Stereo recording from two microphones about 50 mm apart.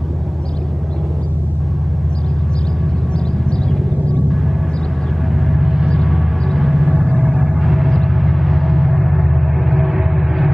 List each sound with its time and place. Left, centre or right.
5.3 s vehicle: centre
7.2 s vehicle: centre
7.6 s vehicle: centre